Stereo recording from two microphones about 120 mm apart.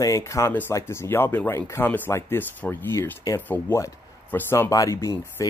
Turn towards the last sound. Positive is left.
turn(degrees=25)  # may be behind; listen again after turning